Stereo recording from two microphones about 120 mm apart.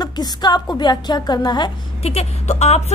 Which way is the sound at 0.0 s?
35° left (ahead or behind).